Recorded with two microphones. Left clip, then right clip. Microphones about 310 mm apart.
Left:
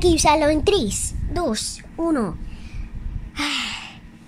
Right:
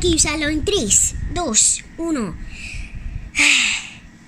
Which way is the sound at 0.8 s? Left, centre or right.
Centre.